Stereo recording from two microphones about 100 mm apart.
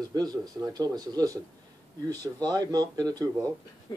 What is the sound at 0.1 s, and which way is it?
Speech, 40° right (ahead or behind).